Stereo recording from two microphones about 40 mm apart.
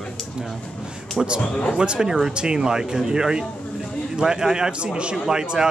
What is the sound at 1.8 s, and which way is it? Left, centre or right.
Speech, right.